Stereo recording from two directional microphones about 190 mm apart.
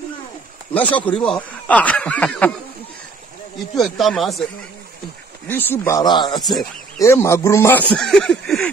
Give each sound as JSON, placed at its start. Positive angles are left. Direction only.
{"t": 0.7, "sound": "speech", "side_deg": 10}
{"t": 3.7, "sound": "speech", "side_deg": 0}
{"t": 5.5, "sound": "speech", "side_deg": 10}
{"t": 6.3, "sound": "speech", "side_deg": 0}
{"t": 7.0, "sound": "speech", "side_deg": 15}
{"t": 7.9, "sound": "speech", "side_deg": 5}